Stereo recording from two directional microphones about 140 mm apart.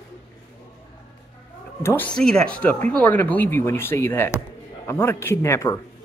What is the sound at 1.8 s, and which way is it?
Speech, 15° left (ahead or behind).